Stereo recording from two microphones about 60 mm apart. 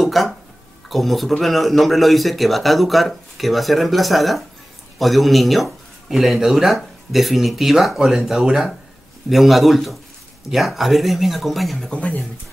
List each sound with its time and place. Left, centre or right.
0.0 s speech: centre
11.9 s speech: left